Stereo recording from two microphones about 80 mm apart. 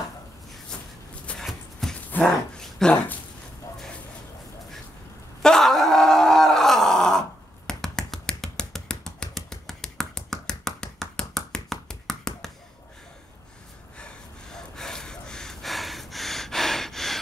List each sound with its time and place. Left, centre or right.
1.4 s shuffling cards: centre
2.5 s a sound: centre
5.4 s groan: centre
13.9 s gasp: centre